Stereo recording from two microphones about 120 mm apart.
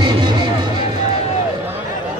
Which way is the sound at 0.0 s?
40° right (ahead or behind).